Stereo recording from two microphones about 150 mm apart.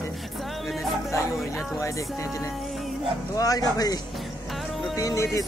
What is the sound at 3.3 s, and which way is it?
Mantra, 25° left (ahead or behind).